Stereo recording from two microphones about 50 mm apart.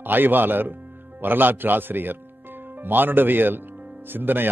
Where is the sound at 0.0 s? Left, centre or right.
Right.